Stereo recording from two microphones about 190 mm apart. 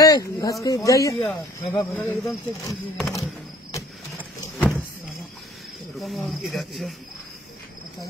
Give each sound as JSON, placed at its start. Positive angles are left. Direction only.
{"t": 0.0, "sound": "speech", "side_deg": 20}
{"t": 4.6, "sound": "vehicle", "side_deg": 5}
{"t": 5.9, "sound": "speech", "side_deg": 0}